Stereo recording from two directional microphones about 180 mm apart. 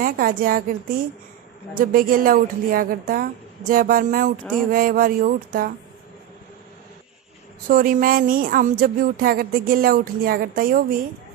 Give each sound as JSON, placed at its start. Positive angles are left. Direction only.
{"t": 0.0, "sound": "speech", "side_deg": -50}
{"t": 7.6, "sound": "speech", "side_deg": -50}